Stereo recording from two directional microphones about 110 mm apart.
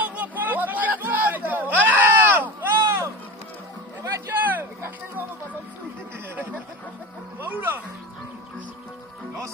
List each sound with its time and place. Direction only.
0.0 s chatter: 15° right (ahead or behind)
4.0 s a sound: 15° right (ahead or behind)
7.3 s music: 15° right (ahead or behind)